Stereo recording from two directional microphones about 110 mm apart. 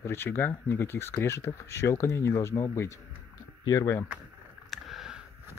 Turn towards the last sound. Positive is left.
turn(degrees=-5)  # may be behind; listen again after turning